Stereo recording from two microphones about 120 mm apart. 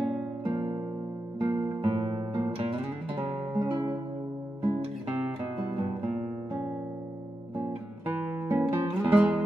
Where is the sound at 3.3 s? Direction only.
5° right (ahead or behind).